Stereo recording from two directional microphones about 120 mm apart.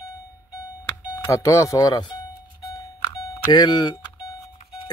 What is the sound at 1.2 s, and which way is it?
Speech, 25° left (ahead or behind).